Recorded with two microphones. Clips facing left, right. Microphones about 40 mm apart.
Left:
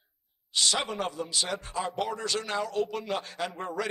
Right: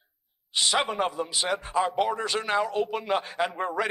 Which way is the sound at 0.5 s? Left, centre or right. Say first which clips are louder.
Right 3 dB; right.